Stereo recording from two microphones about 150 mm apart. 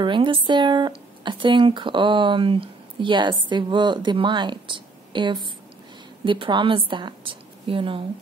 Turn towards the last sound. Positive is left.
turn(degrees=-35)  # may be behind; listen again after turning